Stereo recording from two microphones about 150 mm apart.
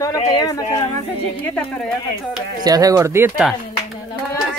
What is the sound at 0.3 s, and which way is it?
Speech, 25° left (ahead or behind).